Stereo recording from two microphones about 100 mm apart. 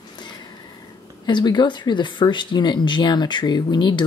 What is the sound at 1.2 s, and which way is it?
Speech, 45° left (ahead or behind).